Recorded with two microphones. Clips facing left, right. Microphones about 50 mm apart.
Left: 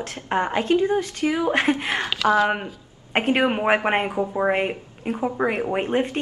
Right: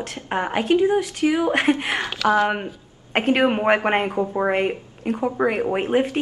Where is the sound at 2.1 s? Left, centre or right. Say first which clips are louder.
Even; left.